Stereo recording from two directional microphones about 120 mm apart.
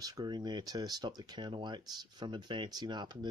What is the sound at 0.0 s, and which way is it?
Speech, 35° right (ahead or behind).